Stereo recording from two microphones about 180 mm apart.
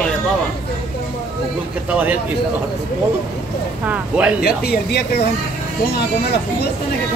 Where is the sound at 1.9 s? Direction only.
10° right (ahead or behind).